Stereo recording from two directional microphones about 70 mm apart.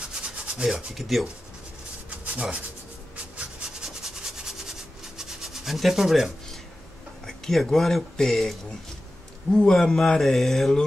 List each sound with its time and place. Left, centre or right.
0.6 s speech: centre
2.0 s rub: centre
7.2 s speech: centre